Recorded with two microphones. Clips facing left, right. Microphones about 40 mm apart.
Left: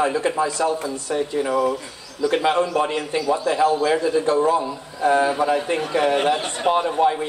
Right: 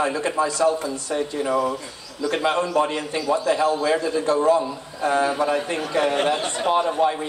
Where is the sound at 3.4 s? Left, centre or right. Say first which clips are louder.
Left 2 dB; centre.